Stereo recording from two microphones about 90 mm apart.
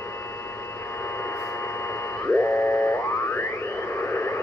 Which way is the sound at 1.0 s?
30° left (ahead or behind).